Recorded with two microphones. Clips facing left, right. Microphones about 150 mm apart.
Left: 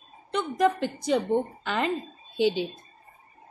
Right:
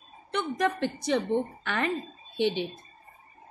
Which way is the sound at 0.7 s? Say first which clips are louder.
Left 4 dB; 10° left (ahead or behind).